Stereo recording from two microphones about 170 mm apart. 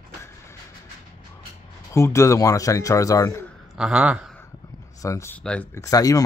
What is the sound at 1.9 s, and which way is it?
Speech, 15° left (ahead or behind).